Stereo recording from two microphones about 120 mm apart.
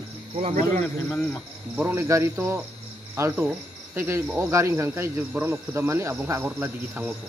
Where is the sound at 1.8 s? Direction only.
20° right (ahead or behind).